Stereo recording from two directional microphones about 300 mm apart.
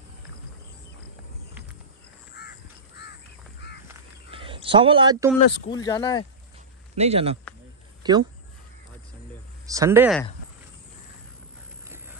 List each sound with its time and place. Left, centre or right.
2.4 s crow: left
4.3 s a sound: centre
5.7 s speech: centre
7.0 s speech: centre
9.7 s speech: centre